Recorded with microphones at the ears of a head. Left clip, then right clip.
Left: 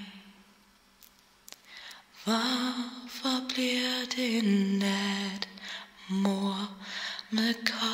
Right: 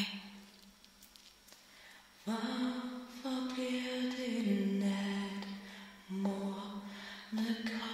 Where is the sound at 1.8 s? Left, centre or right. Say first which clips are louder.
Left 10 dB; left.